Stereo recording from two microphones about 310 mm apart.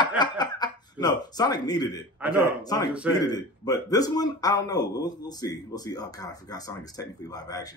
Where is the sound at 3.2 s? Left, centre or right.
Centre.